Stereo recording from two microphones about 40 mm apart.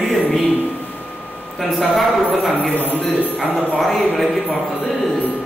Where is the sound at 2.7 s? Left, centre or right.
Right.